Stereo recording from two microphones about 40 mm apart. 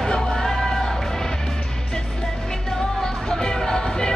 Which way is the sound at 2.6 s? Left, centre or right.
Centre.